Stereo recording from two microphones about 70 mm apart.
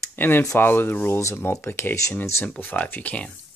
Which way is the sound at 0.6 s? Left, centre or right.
Left.